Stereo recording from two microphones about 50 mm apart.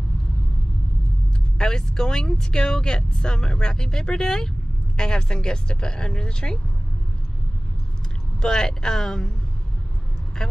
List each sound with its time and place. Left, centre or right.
1.6 s speech: centre
8.4 s speech: centre
10.4 s speech: centre